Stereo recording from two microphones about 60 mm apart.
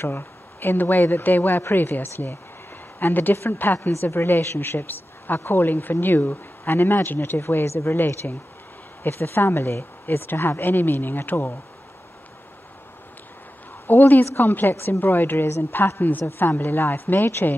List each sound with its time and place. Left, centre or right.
0.0 s a woman's voice: left
3.9 s a woman's voice: left
13.8 s a woman's voice: left